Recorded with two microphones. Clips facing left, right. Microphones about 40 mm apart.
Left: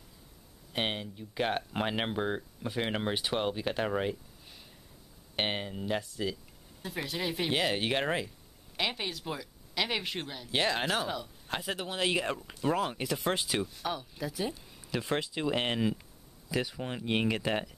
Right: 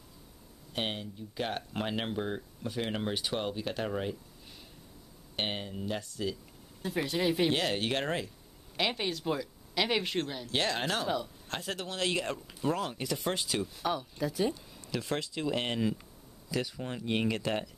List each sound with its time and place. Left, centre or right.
0.7 s speech: left
5.3 s speech: left
6.8 s speech: centre
7.5 s speech: centre
8.7 s speech: centre
13.7 s speech: centre
14.8 s speech: centre